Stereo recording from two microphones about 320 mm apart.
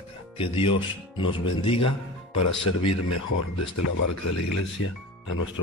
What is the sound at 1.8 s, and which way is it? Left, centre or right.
Speech, left.